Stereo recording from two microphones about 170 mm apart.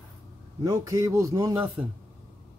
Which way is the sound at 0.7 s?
20° right (ahead or behind).